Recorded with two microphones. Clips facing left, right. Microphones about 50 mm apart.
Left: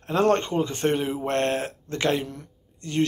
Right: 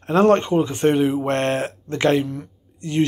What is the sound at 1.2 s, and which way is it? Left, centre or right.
Speech, right.